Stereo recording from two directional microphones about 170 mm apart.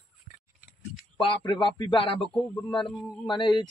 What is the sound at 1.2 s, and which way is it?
Speech, 30° left (ahead or behind).